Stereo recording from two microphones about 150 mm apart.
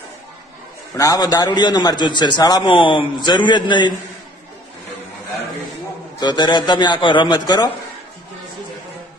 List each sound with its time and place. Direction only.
0.9 s a man's voice: 20° left (ahead or behind)
6.1 s a man's voice: 30° left (ahead or behind)